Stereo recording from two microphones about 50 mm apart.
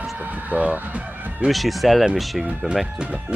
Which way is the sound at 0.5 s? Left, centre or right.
Right.